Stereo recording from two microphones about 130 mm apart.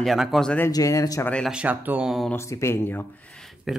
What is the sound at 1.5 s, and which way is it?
Speech, 10° right (ahead or behind).